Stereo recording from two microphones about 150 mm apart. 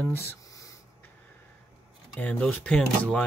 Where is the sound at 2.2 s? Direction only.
10° left (ahead or behind).